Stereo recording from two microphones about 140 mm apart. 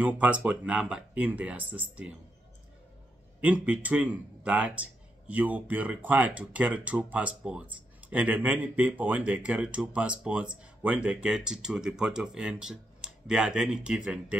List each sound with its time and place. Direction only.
0.0 s speech: 10° right (ahead or behind)
3.3 s speech: 10° right (ahead or behind)